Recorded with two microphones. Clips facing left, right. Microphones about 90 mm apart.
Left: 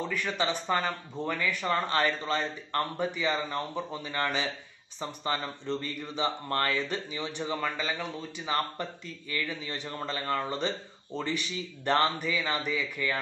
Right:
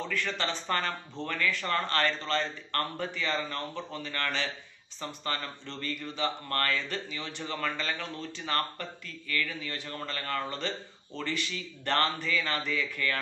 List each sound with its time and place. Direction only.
0.1 s a man's voice: 15° left (ahead or behind)